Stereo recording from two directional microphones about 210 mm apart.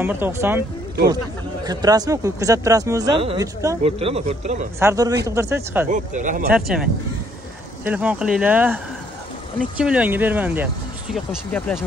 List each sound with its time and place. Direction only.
0.0 s speech: 10° right (ahead or behind)
1.6 s speech: 20° right (ahead or behind)
4.7 s speech: 15° right (ahead or behind)
5.9 s speech: 35° right (ahead or behind)
6.5 s speech: 5° right (ahead or behind)